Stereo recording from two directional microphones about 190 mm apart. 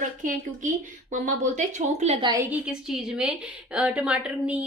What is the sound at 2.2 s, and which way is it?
Speech, 20° right (ahead or behind).